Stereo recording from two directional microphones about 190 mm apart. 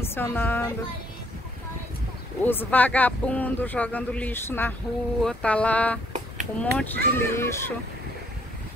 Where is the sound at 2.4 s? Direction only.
10° left (ahead or behind).